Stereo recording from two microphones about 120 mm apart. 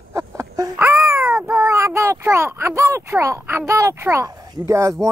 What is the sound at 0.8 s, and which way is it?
Babbling, 20° right (ahead or behind).